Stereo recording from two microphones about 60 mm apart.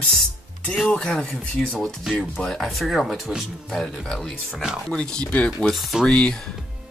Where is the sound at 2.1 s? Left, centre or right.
Centre.